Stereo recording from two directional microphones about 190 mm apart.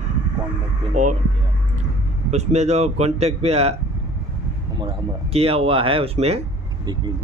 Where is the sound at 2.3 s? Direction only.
35° right (ahead or behind).